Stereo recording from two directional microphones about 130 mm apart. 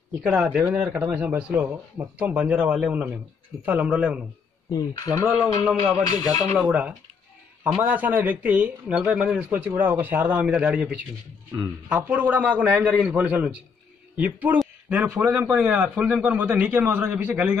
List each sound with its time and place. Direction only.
0.2 s speech: 5° right (ahead or behind)
4.6 s speech: 25° left (ahead or behind)
5.7 s music: 5° right (ahead or behind)
6.0 s speech: 30° left (ahead or behind)
6.7 s speech: 10° right (ahead or behind)